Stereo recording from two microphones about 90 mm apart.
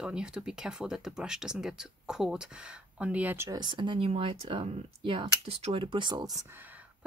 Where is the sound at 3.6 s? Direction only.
60° right (ahead or behind).